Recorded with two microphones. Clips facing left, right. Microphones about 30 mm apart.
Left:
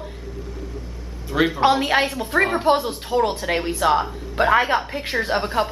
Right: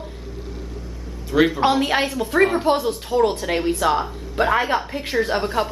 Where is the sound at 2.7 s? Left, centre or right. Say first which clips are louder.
Even; centre.